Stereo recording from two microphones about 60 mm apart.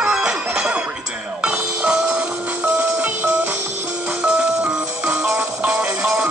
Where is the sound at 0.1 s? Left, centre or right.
Centre.